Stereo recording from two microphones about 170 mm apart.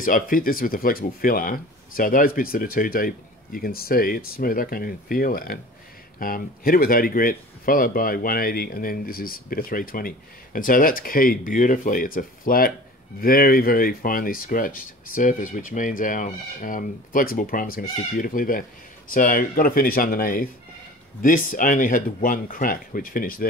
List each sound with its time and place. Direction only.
0.0 s speech: 55° left (ahead or behind)